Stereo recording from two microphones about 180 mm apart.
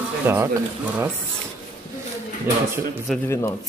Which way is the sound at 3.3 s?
15° left (ahead or behind).